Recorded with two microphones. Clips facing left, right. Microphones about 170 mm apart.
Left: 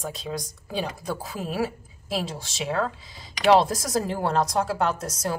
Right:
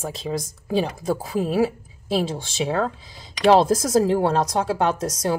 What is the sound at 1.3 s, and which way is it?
A woman's voice, 25° right (ahead or behind).